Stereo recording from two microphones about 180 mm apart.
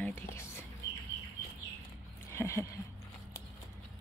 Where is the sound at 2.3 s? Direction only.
15° left (ahead or behind).